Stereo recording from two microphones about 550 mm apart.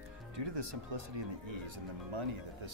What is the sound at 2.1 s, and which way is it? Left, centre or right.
Speech, right.